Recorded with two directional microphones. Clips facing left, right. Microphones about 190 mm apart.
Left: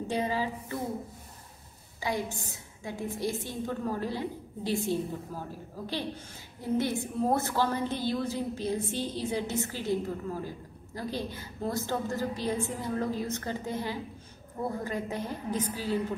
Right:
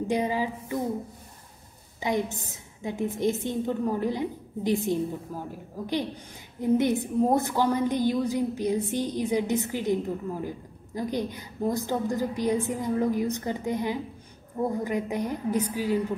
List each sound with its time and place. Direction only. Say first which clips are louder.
0.1 s a woman's voice: right 3 dB; 15° right (ahead or behind)
2.0 s a woman's voice: right 5 dB; 20° right (ahead or behind)
6.6 s a woman's voice: right 6 dB; 20° right (ahead or behind)